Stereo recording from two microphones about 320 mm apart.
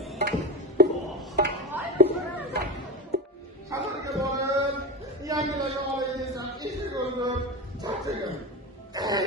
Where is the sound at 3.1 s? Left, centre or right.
Right.